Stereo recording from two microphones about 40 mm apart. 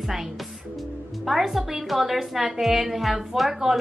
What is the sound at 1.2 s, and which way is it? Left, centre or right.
A woman's voice, centre.